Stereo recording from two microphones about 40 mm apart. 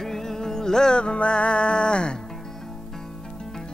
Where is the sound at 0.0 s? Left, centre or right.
Centre.